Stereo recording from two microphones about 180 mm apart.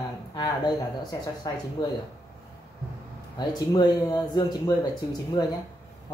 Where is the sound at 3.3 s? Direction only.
20° left (ahead or behind).